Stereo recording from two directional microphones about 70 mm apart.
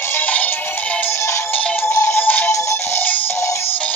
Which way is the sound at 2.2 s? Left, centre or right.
Left.